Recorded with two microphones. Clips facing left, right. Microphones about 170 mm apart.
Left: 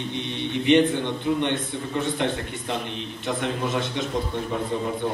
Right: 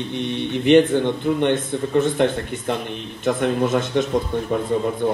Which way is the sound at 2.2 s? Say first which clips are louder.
Right 6 dB; 50° right (ahead or behind).